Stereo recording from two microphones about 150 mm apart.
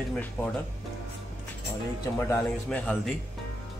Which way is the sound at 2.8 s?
5° left (ahead or behind).